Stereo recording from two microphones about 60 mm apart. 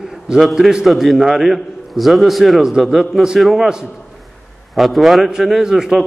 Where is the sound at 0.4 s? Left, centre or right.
Centre.